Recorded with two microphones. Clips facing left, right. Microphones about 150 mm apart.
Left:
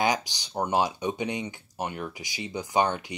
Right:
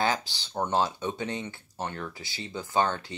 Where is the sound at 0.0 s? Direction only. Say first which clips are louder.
Left 2 dB; 15° left (ahead or behind).